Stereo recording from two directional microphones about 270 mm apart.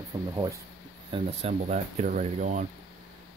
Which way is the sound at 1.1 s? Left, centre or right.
Right.